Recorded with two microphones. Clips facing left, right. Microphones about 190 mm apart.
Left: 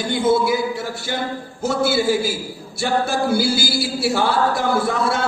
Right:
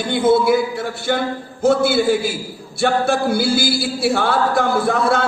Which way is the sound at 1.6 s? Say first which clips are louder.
Right 4 dB; 60° right (ahead or behind).